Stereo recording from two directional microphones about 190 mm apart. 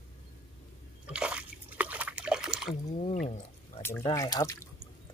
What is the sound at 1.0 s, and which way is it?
Slosh, 5° right (ahead or behind).